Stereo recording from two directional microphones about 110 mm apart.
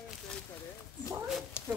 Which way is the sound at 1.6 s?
20° left (ahead or behind).